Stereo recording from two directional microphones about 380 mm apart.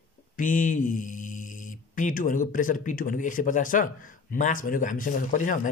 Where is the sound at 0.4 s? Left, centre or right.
Left.